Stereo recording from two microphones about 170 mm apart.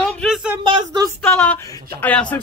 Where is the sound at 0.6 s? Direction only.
30° right (ahead or behind).